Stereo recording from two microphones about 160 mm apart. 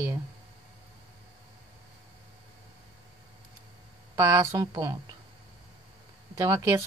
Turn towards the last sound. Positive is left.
turn(degrees=-20)  # may be behind; listen again after turning